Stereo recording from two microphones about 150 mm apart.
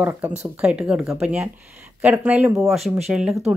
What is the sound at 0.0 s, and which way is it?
Speech, 15° right (ahead or behind).